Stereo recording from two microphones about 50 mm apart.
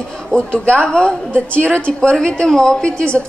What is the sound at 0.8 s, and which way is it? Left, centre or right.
A woman's voice, centre.